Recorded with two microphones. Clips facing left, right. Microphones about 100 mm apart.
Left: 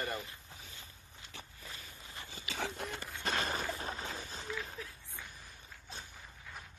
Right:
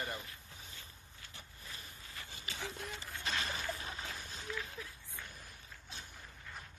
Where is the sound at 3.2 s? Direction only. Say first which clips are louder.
Left 4 dB; 50° left (ahead or behind).